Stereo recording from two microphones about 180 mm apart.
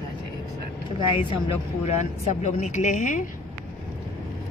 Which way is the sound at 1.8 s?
40° left (ahead or behind).